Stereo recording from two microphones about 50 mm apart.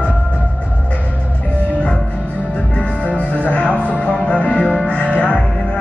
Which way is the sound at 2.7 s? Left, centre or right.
Left.